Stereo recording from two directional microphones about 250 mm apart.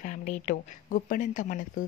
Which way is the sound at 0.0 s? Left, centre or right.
Left.